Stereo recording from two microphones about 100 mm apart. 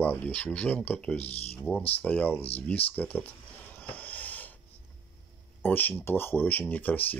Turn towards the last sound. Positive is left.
turn(degrees=20)  # may be behind; listen again after turning